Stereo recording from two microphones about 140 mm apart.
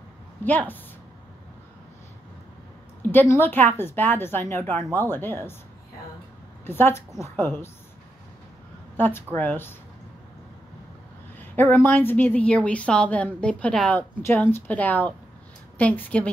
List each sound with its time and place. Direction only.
0.4 s a woman's voice: 10° left (ahead or behind)
3.1 s a woman's voice: 15° left (ahead or behind)
6.6 s a woman's voice: 15° left (ahead or behind)
8.9 s a woman's voice: 15° left (ahead or behind)
11.5 s a woman's voice: 15° left (ahead or behind)